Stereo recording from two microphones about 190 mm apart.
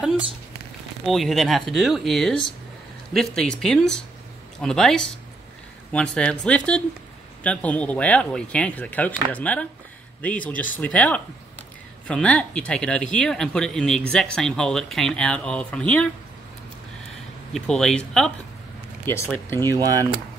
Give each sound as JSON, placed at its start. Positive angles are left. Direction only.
{"t": 1.0, "sound": "speech", "side_deg": 0}
{"t": 17.5, "sound": "speech", "side_deg": 5}
{"t": 19.3, "sound": "speech", "side_deg": 10}
{"t": 19.7, "sound": "speech", "side_deg": -15}